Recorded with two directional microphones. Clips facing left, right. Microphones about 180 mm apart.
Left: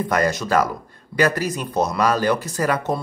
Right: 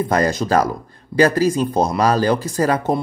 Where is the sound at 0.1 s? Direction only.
30° right (ahead or behind).